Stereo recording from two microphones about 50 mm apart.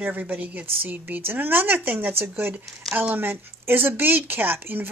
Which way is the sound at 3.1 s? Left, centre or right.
Right.